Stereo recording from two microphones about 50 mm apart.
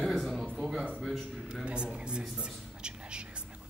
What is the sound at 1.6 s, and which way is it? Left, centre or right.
Speech, right.